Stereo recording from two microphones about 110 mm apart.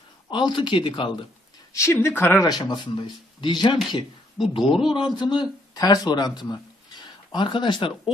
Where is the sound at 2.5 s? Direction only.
40° left (ahead or behind).